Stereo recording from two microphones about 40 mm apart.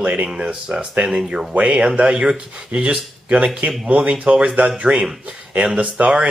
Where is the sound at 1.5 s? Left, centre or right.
Right.